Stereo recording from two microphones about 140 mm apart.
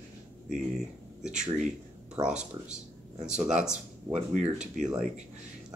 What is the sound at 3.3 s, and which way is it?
Speech, 5° right (ahead or behind).